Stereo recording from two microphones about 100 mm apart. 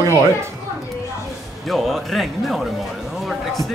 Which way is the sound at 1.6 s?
Centre (ahead or behind).